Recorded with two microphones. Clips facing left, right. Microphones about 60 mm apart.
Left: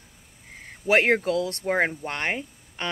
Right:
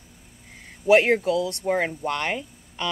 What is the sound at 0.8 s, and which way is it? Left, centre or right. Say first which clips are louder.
Speech: right 3 dB; left.